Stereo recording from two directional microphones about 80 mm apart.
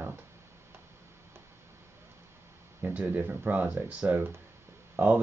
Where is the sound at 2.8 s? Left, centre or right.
Right.